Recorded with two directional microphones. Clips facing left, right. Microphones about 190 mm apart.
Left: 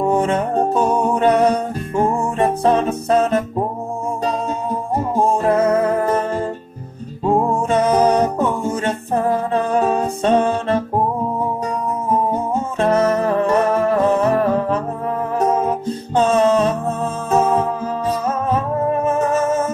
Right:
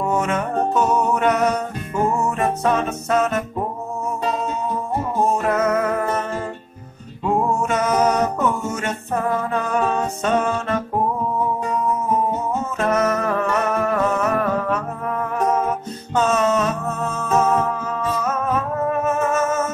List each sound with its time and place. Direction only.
0.0 s music: 30° left (ahead or behind)
5.1 s music: 30° left (ahead or behind)
12.5 s music: 30° left (ahead or behind)